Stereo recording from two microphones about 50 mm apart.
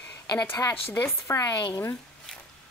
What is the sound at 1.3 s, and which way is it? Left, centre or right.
Speech, left.